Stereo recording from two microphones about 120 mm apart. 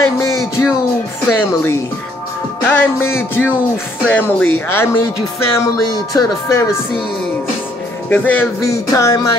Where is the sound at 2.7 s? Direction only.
20° left (ahead or behind).